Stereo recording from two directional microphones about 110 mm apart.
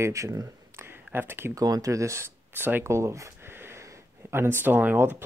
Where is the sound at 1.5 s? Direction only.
35° right (ahead or behind).